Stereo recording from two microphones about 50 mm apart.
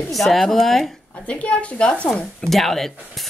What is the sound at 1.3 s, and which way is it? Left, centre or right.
Speech, left.